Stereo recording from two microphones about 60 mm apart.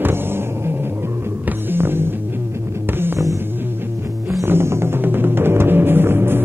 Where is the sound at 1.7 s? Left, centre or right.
Right.